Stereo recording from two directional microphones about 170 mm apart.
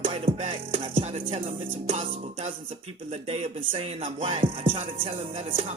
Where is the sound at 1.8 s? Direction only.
45° right (ahead or behind).